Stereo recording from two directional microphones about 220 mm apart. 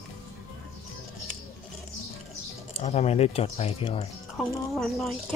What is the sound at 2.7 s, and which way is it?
Speech, 30° left (ahead or behind).